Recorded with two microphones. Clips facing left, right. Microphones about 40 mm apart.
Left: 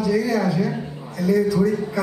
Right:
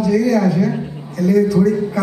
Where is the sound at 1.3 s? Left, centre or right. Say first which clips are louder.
Right 4 dB; right.